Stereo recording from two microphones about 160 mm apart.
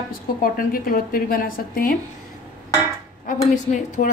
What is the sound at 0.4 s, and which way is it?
A woman's voice, 65° left (ahead or behind).